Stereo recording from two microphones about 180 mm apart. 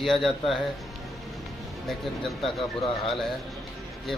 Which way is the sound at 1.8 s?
Centre (ahead or behind).